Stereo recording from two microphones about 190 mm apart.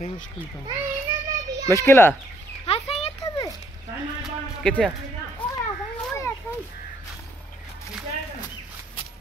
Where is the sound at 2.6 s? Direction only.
30° left (ahead or behind).